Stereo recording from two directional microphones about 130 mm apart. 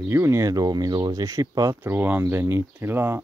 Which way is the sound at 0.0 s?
20° right (ahead or behind).